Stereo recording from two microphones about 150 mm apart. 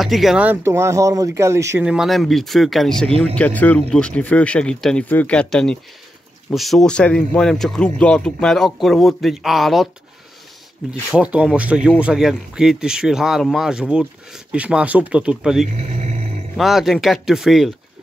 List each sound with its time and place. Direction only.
0.0 s speech: centre (ahead or behind); by 1.9 s 20° right (ahead or behind)
1.9 s speech: centre (ahead or behind)
10.9 s speech: 5° right (ahead or behind)
15.6 s speech: 50° right (ahead or behind)
16.5 s speech: centre (ahead or behind)